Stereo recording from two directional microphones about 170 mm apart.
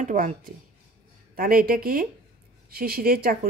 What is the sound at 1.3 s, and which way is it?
Speech, 60° right (ahead or behind).